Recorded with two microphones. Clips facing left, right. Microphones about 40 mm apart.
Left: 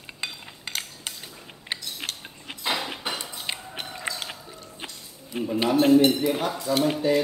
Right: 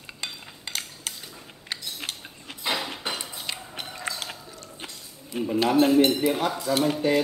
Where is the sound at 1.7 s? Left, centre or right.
Left.